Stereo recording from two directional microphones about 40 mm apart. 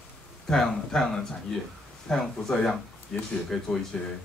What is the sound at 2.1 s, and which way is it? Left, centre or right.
Speech, centre.